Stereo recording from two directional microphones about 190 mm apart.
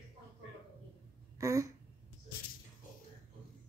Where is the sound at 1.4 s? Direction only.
15° right (ahead or behind).